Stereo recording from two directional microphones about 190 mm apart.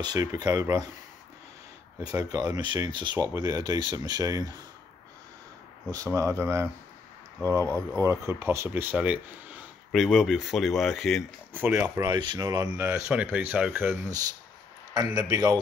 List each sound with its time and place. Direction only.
0.0 s speech: 20° right (ahead or behind)
2.0 s speech: 20° right (ahead or behind)
5.9 s speech: 15° right (ahead or behind)
7.7 s speech: 15° right (ahead or behind)
12.1 s speech: 20° right (ahead or behind)
15.1 s speech: 20° right (ahead or behind)